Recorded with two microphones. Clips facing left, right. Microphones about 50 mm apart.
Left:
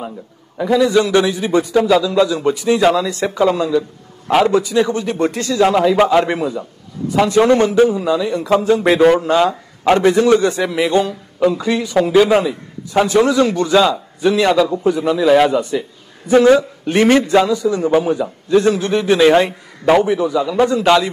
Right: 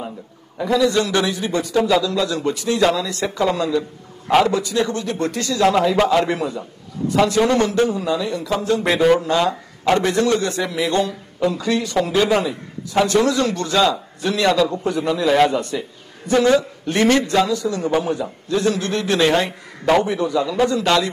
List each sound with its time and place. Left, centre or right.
0.7 s a man's voice: centre
1.8 s a man's voice: centre; by 5.6 s left
5.6 s a man's voice: centre
7.2 s a man's voice: left; by 8.3 s centre
8.3 s speech: left
8.6 s a man's voice: centre
11.5 s a man's voice: centre
16.3 s a man's voice: centre
18.5 s a man's voice: left; by 20.5 s centre
20.7 s a man's voice: centre